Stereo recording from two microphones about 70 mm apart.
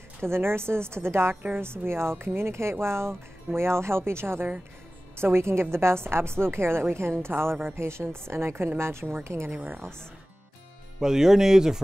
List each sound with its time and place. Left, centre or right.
0.2 s a woman's voice: right
1.3 s a woman's voice: right
1.6 s a woman's voice: right
11.0 s speech: centre